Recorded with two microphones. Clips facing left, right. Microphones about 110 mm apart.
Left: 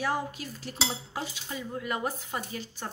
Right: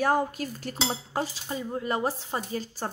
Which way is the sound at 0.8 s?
40° right (ahead or behind).